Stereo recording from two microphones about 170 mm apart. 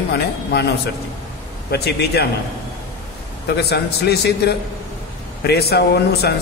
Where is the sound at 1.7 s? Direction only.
70° left (ahead or behind).